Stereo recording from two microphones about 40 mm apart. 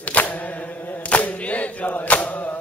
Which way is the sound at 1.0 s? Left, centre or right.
Left.